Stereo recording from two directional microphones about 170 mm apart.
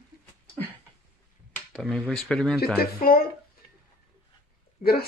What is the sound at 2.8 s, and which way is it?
Speech, 60° left (ahead or behind).